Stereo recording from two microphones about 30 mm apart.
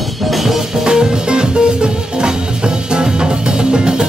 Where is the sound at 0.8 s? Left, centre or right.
Right.